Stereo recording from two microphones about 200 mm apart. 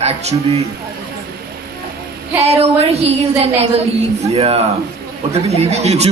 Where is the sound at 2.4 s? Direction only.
30° right (ahead or behind).